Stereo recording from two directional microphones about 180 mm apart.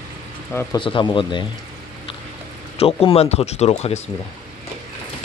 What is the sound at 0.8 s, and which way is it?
Speech, 30° left (ahead or behind).